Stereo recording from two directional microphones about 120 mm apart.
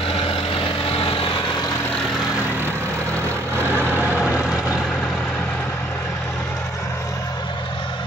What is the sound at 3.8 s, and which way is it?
Vehicle, 15° right (ahead or behind).